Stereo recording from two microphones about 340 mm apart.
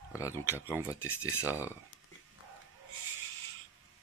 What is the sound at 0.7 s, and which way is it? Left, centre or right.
Speech, centre.